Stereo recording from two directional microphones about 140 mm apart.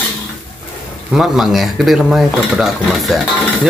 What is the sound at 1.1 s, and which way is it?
Stir, 5° right (ahead or behind).